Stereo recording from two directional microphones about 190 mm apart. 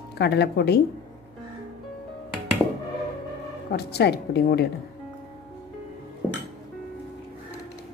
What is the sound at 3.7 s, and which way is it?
A woman's voice, 60° left (ahead or behind).